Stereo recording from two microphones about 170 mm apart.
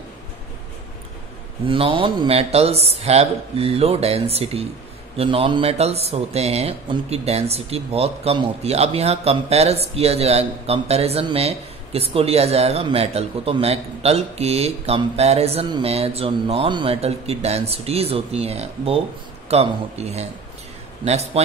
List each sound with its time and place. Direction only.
1.7 s speech: 30° right (ahead or behind)